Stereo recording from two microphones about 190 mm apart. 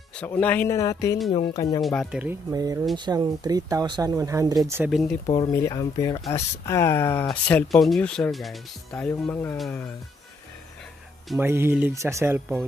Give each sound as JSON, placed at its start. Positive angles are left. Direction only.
{"t": 0.2, "sound": "speech", "side_deg": 10}
{"t": 1.8, "sound": "speech", "side_deg": 0}
{"t": 2.5, "sound": "speech", "side_deg": -15}
{"t": 4.9, "sound": "speech", "side_deg": 5}
{"t": 5.3, "sound": "speech", "side_deg": 20}
{"t": 11.2, "sound": "speech", "side_deg": -10}